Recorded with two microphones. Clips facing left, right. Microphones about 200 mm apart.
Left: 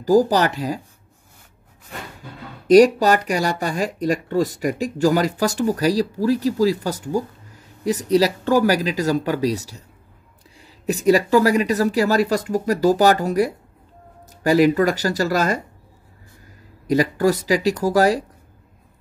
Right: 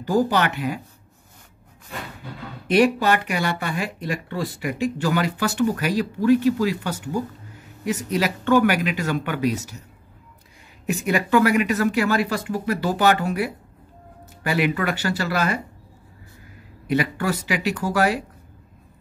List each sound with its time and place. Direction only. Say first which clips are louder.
0.0 s speech: left 5 dB; 35° left (ahead or behind)
2.7 s speech: left 6 dB; 40° left (ahead or behind)
10.9 s speech: left 5 dB; 35° left (ahead or behind)
16.8 s speech: left 5 dB; 40° left (ahead or behind)